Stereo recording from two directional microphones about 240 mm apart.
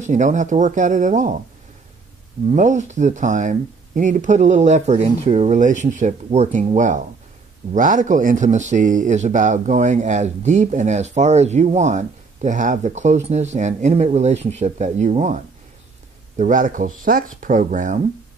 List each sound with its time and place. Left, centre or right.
0.0 s speech: right
2.5 s speech: right